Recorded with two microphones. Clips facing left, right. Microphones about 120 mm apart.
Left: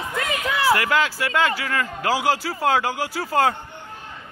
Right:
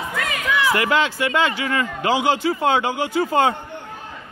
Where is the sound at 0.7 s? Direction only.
Centre (ahead or behind).